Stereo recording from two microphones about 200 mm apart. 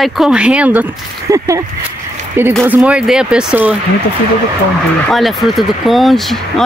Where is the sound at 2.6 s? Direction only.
5° right (ahead or behind).